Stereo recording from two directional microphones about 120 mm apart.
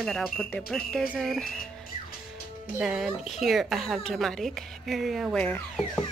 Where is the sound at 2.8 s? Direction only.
5° right (ahead or behind).